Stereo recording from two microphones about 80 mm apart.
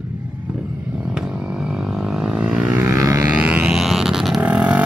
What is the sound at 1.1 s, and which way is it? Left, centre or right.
Vehicle, centre.